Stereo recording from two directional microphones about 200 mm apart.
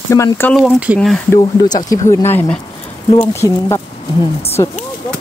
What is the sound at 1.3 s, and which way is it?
Speech, 20° left (ahead or behind).